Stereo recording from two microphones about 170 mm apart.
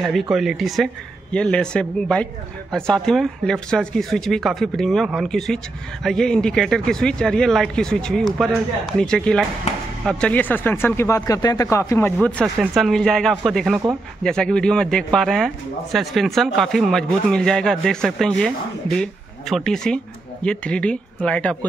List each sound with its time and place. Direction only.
0.0 s a man's voice: centre (ahead or behind)
19.5 s a man's voice: 5° left (ahead or behind)